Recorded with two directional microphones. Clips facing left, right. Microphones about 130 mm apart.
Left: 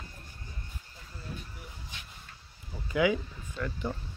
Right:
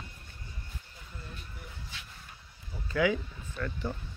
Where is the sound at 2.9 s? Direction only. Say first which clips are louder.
Left 1 dB; 15° left (ahead or behind).